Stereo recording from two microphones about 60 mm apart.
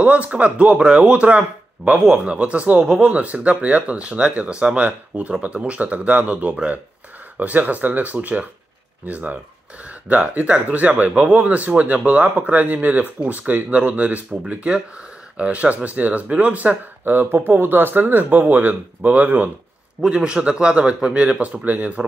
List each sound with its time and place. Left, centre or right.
0.0 s speech: right
20.0 s speech: centre